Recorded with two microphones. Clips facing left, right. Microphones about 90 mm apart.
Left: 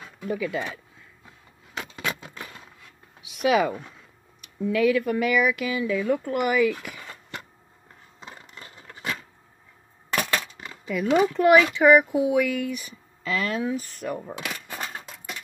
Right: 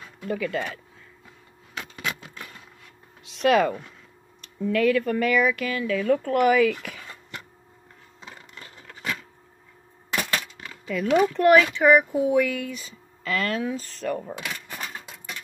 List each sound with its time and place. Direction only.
0.2 s speech: 5° left (ahead or behind)
3.2 s a sound: 5° left (ahead or behind)
4.4 s speech: 10° left (ahead or behind)
8.2 s coin: 25° left (ahead or behind)
10.6 s a sound: 10° left (ahead or behind)
11.1 s speech: 5° left (ahead or behind)